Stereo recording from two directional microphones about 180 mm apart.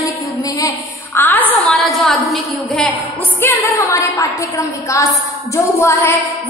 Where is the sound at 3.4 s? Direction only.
15° left (ahead or behind).